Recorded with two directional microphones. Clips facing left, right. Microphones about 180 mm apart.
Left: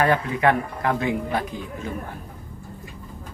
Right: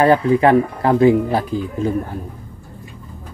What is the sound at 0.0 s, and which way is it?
Speech, 30° right (ahead or behind).